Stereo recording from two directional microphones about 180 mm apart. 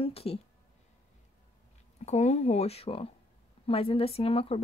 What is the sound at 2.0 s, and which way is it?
Speech, 40° left (ahead or behind).